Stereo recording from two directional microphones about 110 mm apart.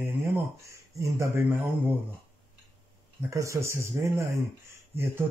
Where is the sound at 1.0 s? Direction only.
20° right (ahead or behind).